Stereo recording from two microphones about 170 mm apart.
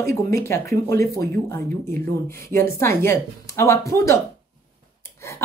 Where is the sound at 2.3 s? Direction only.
15° left (ahead or behind).